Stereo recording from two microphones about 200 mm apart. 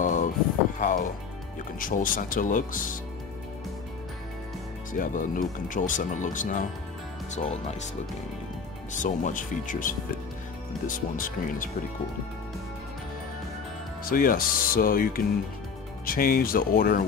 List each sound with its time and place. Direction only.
0.0 s a sound: 40° left (ahead or behind)
0.7 s music: 40° left (ahead or behind)
1.8 s speech: 45° left (ahead or behind)
4.9 s speech: 40° left (ahead or behind)
8.9 s speech: 40° left (ahead or behind)
14.0 s speech: 45° left (ahead or behind)